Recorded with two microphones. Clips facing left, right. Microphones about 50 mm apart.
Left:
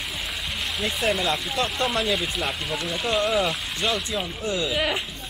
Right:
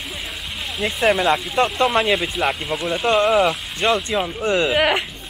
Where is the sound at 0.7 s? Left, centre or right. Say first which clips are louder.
Right 7 dB; centre.